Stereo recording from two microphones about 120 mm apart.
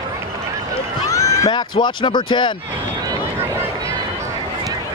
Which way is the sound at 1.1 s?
30° left (ahead or behind).